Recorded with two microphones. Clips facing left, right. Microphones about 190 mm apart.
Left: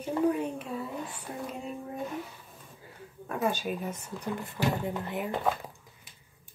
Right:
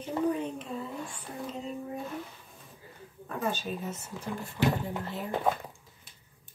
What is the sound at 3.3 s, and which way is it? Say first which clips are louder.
Speech: left 3 dB; 10° left (ahead or behind).